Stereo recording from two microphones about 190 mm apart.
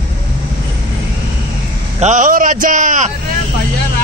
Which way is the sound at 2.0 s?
40° right (ahead or behind).